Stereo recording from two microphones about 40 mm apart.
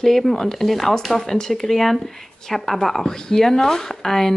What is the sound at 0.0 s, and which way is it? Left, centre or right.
Speech, centre.